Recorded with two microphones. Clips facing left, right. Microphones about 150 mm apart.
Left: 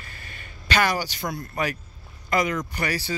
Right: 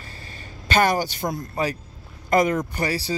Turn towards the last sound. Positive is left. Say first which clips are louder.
# right 3 dB
turn(degrees=-35)  # may be behind; listen again after turning